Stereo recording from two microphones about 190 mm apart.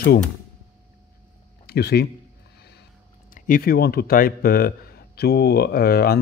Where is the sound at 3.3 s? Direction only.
45° left (ahead or behind).